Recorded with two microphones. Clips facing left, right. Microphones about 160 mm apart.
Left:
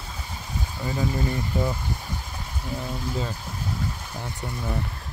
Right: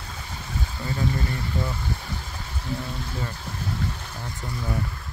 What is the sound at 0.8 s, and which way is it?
Speech, 15° left (ahead or behind).